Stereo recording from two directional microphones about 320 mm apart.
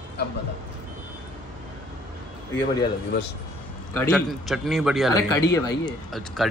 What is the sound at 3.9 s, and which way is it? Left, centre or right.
A man's voice, centre.